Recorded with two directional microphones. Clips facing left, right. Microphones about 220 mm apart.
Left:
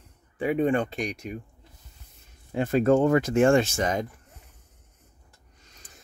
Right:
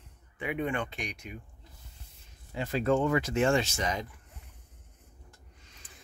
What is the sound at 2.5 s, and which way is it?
Speech, 50° left (ahead or behind).